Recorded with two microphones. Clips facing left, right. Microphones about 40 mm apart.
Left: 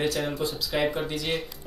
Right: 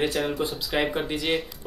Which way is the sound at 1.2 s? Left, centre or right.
Centre.